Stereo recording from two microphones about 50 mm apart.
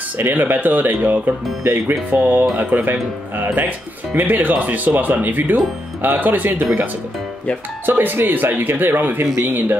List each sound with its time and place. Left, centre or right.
0.2 s speech: right
2.1 s speech: right